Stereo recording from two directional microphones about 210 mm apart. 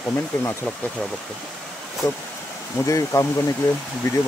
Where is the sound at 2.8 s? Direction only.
15° left (ahead or behind).